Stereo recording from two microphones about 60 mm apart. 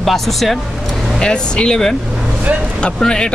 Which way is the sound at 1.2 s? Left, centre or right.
Centre.